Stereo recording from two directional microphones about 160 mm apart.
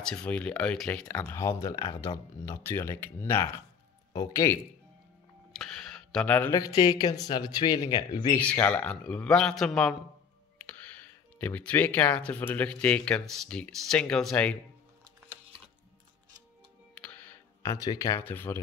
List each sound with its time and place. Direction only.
0.0 s speech: 5° left (ahead or behind)
5.5 s a sound: centre (ahead or behind)
6.5 s speech: 25° left (ahead or behind)
8.4 s speech: 10° left (ahead or behind)
11.3 s speech: 10° left (ahead or behind)
16.9 s music: 10° left (ahead or behind)
17.7 s speech: 20° left (ahead or behind)